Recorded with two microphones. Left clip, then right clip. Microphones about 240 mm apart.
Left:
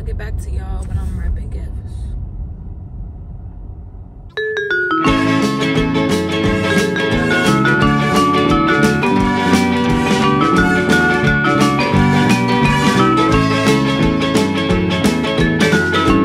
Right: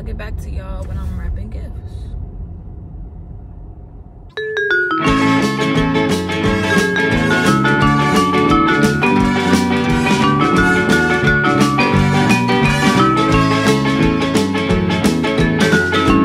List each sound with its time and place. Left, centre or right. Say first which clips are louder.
4.4 s music: right 1 dB; centre